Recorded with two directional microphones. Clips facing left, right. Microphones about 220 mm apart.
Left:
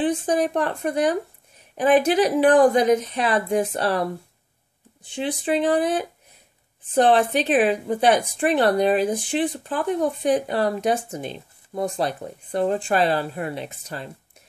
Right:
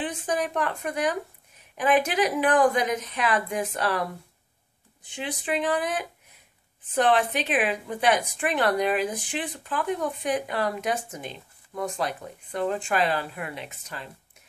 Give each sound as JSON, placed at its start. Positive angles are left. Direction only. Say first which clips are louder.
{"t": 0.0, "sound": "a woman's voice", "louder": "left 7 dB", "side_deg": 35}